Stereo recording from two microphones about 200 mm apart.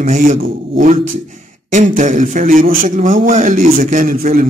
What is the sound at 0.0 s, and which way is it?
A man's voice, 40° right (ahead or behind).